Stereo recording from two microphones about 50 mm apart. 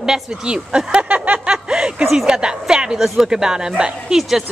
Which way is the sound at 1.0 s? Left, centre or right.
Right.